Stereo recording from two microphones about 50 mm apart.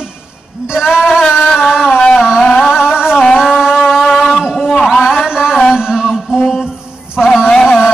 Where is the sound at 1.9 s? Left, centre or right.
Left.